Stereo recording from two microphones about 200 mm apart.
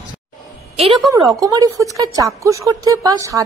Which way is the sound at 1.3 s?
15° right (ahead or behind).